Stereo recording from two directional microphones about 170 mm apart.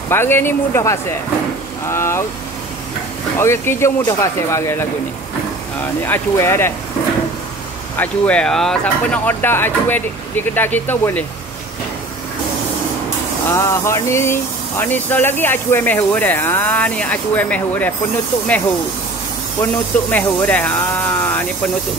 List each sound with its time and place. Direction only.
0.1 s speech: 15° left (ahead or behind)
3.3 s speech: 15° left (ahead or behind)
6.0 s speech: 15° left (ahead or behind)
8.0 s speech: 5° left (ahead or behind)
13.5 s speech: 15° left (ahead or behind)
19.6 s speech: 10° left (ahead or behind)